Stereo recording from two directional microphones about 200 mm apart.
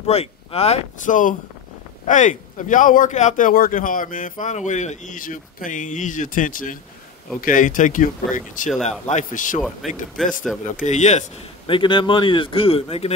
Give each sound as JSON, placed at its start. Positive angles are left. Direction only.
{"t": 0.0, "sound": "speech", "side_deg": 30}
{"t": 10.1, "sound": "speech", "side_deg": 0}
{"t": 10.6, "sound": "a man's voice", "side_deg": 40}